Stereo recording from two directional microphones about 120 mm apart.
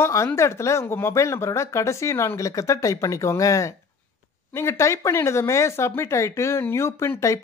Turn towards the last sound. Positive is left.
turn(degrees=25)  # may be behind; listen again after turning